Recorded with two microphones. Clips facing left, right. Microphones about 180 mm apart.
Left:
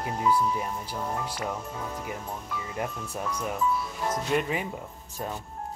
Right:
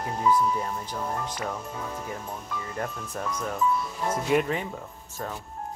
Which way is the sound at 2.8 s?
10° left (ahead or behind).